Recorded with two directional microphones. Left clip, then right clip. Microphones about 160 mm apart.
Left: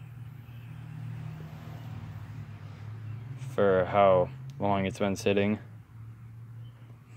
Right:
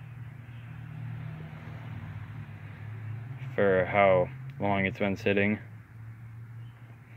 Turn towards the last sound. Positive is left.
turn(degrees=15)  # may be behind; listen again after turning